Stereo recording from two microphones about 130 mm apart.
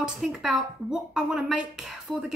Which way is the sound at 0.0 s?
5° right (ahead or behind).